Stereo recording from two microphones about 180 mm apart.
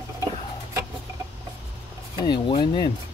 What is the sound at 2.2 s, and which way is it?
Speech, 25° left (ahead or behind).